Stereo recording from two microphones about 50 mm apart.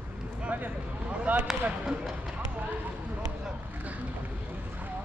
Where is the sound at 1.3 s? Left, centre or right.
Right.